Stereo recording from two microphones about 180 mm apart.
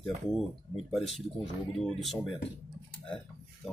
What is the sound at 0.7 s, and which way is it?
Speech, centre (ahead or behind).